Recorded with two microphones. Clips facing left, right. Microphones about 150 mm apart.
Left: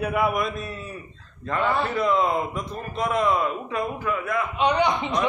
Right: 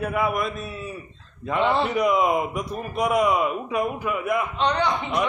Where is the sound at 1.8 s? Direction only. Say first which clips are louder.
Right 2 dB; 15° right (ahead or behind).